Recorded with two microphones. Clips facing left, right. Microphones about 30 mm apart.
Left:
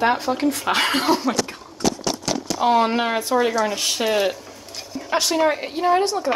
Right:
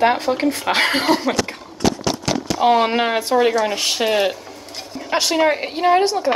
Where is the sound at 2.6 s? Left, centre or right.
Right.